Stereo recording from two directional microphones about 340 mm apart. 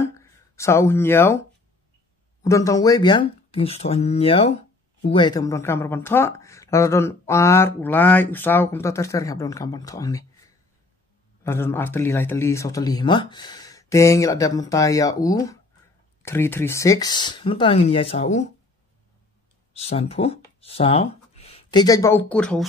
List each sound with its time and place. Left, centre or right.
0.0 s a sound: centre
2.4 s speech: centre
11.4 s speech: centre
19.7 s speech: centre